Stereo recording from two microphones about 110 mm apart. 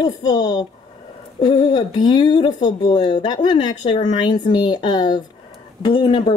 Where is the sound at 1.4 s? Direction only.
45° left (ahead or behind).